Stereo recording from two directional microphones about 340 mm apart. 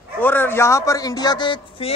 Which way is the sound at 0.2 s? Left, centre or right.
Centre.